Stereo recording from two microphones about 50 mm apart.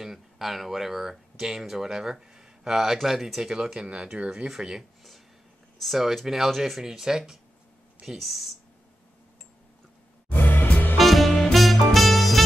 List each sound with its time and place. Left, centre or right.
0.0 s speech: centre
10.3 s music: left
11.0 s swing music: centre
11.5 s music: centre